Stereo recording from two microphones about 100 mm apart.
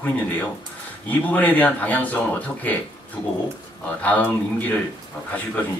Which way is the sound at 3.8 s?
15° left (ahead or behind).